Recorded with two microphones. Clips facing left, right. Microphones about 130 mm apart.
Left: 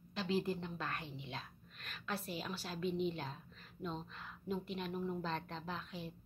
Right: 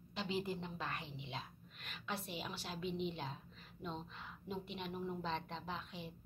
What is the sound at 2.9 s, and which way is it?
Speech, 40° left (ahead or behind).